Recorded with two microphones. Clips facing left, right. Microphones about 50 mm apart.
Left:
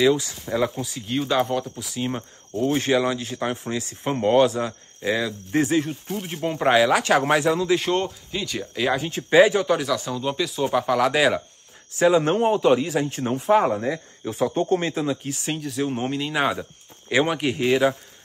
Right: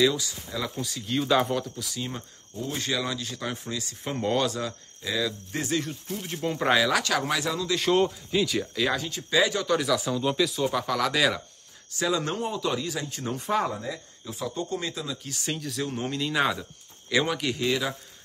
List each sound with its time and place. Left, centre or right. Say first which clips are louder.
0.1 s speech: left 9 dB; left
0.7 s speech: left 2 dB; centre
2.0 s speech: left 11 dB; left
5.0 s speech: left 5 dB; left
5.6 s speech: left 8 dB; left
7.8 s speech: right 1 dB; centre
8.7 s speech: left 5 dB; centre
9.0 s speech: left 8 dB; left
9.8 s speech: left 1 dB; centre
10.6 s speech: left 5 dB; centre; by 13.4 s left
13.7 s speech: left 8 dB; left
15.2 s speech: left 4 dB; left